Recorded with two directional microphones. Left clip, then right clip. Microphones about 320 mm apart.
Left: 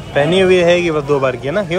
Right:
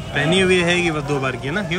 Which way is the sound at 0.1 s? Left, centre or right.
Centre.